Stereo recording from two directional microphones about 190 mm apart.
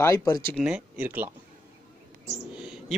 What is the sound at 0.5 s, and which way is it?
Speech, 5° right (ahead or behind).